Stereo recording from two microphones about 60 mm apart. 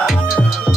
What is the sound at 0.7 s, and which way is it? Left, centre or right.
Music, centre.